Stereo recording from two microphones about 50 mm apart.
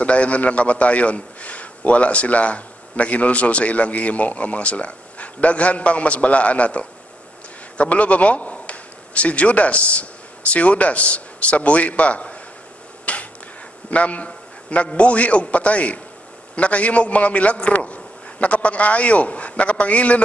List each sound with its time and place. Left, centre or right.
0.0 s a man's voice: left
13.0 s a sound: left
13.8 s a man's voice: left